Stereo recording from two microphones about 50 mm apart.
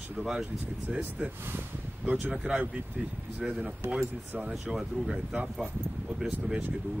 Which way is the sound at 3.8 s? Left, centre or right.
Right.